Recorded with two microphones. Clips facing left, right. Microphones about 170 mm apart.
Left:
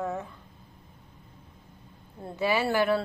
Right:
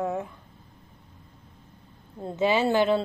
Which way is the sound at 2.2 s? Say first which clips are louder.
Right 4 dB; 20° right (ahead or behind).